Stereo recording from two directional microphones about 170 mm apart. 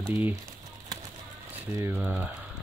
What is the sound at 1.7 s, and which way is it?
Speech, 15° right (ahead or behind).